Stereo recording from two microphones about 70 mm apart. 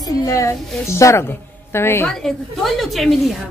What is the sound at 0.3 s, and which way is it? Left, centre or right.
A woman's voice, left.